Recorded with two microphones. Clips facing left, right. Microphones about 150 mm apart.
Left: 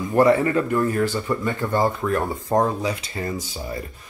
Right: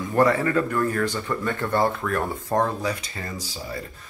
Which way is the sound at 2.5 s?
20° left (ahead or behind).